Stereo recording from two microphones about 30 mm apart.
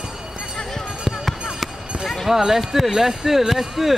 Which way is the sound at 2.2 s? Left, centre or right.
Centre.